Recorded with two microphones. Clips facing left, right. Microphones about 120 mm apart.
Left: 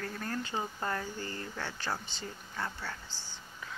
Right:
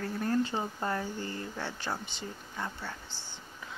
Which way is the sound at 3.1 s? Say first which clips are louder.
Right 1 dB; 60° right (ahead or behind).